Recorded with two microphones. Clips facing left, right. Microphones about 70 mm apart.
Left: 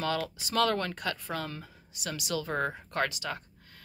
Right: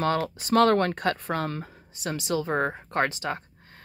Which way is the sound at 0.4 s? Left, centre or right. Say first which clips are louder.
Right 9 dB; right.